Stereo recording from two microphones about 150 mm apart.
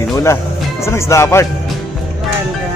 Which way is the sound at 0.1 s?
20° left (ahead or behind).